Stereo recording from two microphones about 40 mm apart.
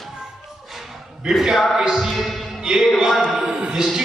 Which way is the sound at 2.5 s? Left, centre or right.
Centre.